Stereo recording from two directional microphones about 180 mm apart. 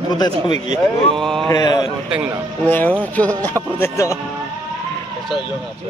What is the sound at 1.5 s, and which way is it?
Speech, 20° left (ahead or behind).